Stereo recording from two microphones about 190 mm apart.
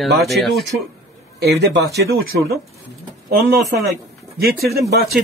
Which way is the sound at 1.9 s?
55° right (ahead or behind).